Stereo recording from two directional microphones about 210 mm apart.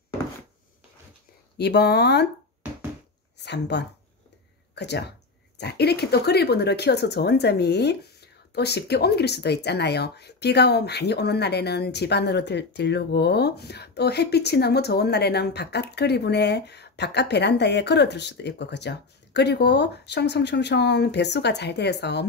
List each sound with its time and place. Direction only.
1.6 s speech: 50° left (ahead or behind)
3.3 s speech: 55° left (ahead or behind)